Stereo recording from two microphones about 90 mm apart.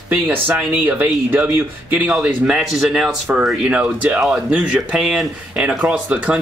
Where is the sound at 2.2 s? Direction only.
5° right (ahead or behind).